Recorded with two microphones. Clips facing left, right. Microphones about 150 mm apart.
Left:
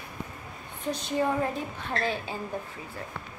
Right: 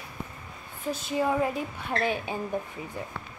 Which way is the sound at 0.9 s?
5° right (ahead or behind).